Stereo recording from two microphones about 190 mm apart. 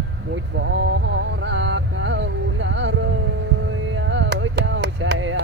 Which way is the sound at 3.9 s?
80° right.